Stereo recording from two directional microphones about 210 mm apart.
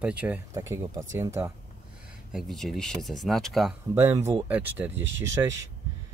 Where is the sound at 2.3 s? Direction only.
Centre (ahead or behind).